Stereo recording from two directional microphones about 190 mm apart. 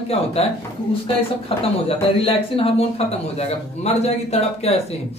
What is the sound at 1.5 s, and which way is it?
Speech, 30° left (ahead or behind).